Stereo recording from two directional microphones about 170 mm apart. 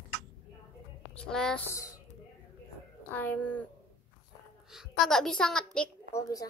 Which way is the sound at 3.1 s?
10° left (ahead or behind).